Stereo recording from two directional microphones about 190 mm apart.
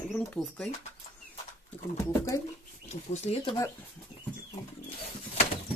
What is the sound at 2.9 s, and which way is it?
Speech, 35° left (ahead or behind).